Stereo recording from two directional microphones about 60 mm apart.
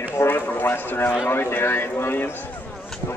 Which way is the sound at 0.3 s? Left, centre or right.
Left.